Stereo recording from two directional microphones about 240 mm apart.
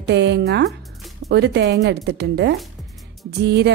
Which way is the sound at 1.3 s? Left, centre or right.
Right.